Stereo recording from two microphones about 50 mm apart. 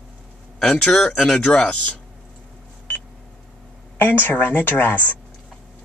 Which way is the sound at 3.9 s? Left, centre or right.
Left.